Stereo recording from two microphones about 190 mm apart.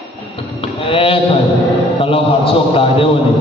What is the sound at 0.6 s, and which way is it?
Mantra, 30° left (ahead or behind).